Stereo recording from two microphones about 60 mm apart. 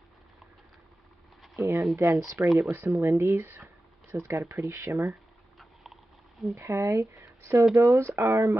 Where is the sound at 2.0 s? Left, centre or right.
Right.